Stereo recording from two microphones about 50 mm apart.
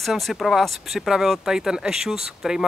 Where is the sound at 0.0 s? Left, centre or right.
Centre.